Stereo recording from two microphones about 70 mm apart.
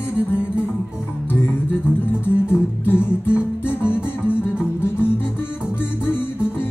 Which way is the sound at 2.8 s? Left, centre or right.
Left.